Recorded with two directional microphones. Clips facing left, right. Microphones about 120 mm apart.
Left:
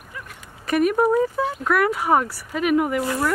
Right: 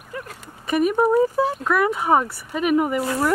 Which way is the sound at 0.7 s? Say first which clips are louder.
Even; centre (ahead or behind).